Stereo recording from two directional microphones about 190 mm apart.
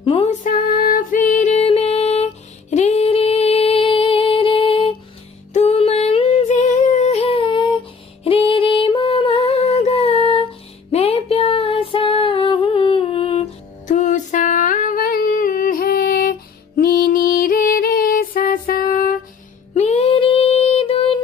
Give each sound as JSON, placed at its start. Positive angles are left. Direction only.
{"t": 0.0, "sound": "music", "side_deg": 30}
{"t": 5.5, "sound": "female singing", "side_deg": 35}
{"t": 8.2, "sound": "music", "side_deg": 30}
{"t": 19.7, "sound": "music", "side_deg": 35}